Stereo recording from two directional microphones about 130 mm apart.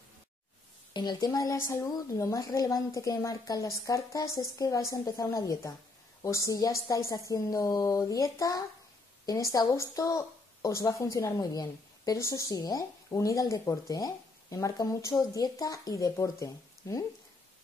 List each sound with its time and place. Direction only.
0.9 s speech: 30° left (ahead or behind)